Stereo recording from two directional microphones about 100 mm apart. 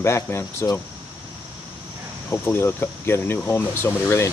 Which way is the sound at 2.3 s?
25° left (ahead or behind).